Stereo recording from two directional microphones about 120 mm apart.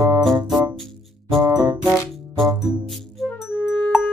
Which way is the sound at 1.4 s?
30° right (ahead or behind).